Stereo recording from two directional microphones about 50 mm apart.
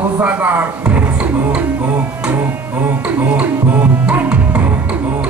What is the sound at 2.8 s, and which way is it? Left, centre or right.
Music, right.